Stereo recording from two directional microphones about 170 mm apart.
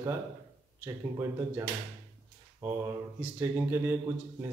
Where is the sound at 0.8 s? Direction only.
20° right (ahead or behind).